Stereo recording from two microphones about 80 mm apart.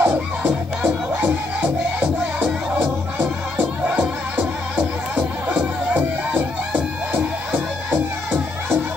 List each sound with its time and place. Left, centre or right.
0.0 s music: right